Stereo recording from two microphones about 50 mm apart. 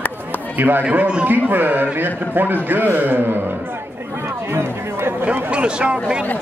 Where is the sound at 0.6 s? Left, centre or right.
Right.